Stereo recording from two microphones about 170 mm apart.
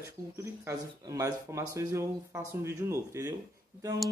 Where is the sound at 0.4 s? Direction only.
20° right (ahead or behind).